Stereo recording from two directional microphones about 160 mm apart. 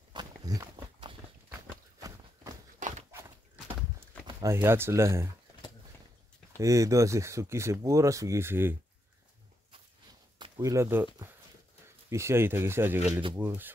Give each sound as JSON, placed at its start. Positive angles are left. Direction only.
{"t": 0.1, "sound": "a sound", "side_deg": -25}
{"t": 2.0, "sound": "run", "side_deg": -20}
{"t": 2.8, "sound": "a sound", "side_deg": -55}
{"t": 4.4, "sound": "speech", "side_deg": -15}
{"t": 6.6, "sound": "speech", "side_deg": -20}
{"t": 10.4, "sound": "speech", "side_deg": -20}
{"t": 12.1, "sound": "speech", "side_deg": -15}